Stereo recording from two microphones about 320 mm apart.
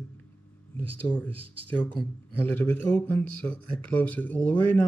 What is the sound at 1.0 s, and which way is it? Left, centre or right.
Speech, centre.